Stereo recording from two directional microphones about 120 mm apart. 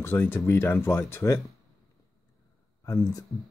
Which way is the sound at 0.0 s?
20° left (ahead or behind).